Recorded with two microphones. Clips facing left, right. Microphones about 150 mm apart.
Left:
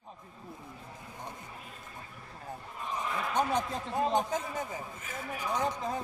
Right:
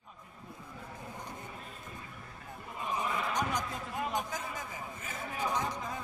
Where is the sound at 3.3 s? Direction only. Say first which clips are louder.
Left 4 dB; 30° left (ahead or behind).